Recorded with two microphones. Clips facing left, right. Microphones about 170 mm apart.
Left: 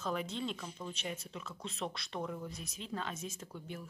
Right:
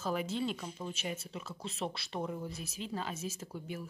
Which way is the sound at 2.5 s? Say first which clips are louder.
Right 2 dB; 5° right (ahead or behind).